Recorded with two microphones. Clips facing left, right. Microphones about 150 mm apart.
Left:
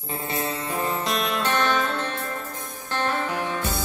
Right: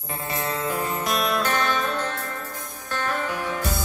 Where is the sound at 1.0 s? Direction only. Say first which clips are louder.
Right 1 dB; 30° left (ahead or behind).